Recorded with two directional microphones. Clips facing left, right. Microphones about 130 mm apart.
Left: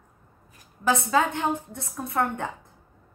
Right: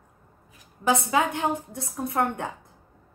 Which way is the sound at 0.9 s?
15° right (ahead or behind).